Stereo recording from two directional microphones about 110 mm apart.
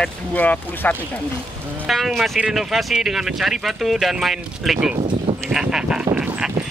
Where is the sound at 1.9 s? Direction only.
Centre (ahead or behind).